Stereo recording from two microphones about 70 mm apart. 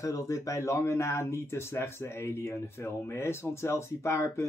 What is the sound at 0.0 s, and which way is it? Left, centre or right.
Speech, left.